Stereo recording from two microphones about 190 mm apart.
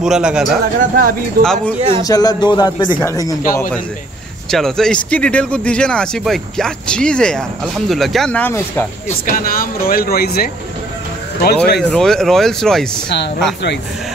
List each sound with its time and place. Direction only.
0.0 s speech: 5° right (ahead or behind)
1.4 s speech: 55° right (ahead or behind)
1.8 s a man's voice: 25° right (ahead or behind)
2.0 s speech: 20° left (ahead or behind)
4.5 s speech: centre (ahead or behind)
9.2 s speech: 50° left (ahead or behind)
11.9 s speech: centre (ahead or behind)